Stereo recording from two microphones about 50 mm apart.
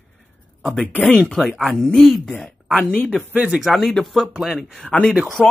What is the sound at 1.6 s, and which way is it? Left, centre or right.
Speech, centre.